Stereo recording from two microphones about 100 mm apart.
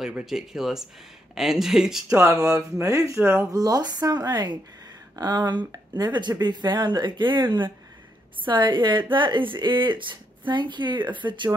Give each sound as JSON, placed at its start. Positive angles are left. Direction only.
{"t": 0.0, "sound": "speech", "side_deg": -5}
{"t": 2.1, "sound": "a woman's voice", "side_deg": -30}